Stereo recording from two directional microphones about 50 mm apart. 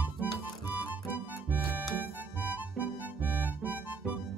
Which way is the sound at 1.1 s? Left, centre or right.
Right.